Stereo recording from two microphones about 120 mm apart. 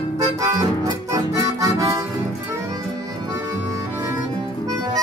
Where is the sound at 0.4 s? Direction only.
30° right (ahead or behind).